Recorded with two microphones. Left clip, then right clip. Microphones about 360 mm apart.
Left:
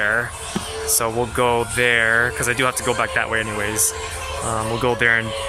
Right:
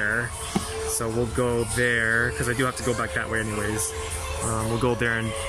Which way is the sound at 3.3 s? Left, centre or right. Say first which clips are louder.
Left 5 dB; left.